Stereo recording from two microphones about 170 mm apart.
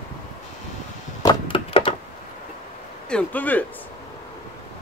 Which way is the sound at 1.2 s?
25° left (ahead or behind).